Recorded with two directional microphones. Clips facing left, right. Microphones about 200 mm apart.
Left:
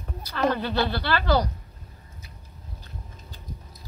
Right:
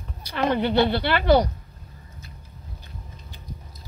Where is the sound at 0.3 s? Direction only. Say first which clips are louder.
Right 3 dB; 20° right (ahead or behind).